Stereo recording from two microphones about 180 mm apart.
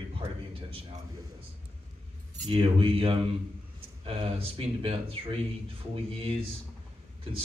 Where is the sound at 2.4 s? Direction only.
30° right (ahead or behind).